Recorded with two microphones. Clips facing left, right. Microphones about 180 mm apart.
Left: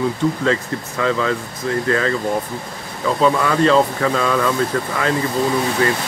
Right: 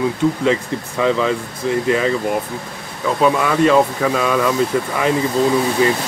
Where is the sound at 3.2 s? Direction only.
10° right (ahead or behind).